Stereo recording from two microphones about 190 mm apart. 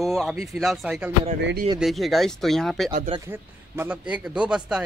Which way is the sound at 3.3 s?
10° right (ahead or behind).